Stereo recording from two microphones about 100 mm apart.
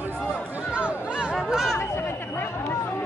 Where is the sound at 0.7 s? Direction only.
10° right (ahead or behind).